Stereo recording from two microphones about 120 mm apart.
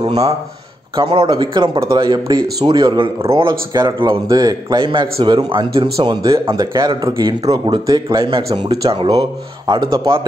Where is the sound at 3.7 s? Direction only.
35° right (ahead or behind).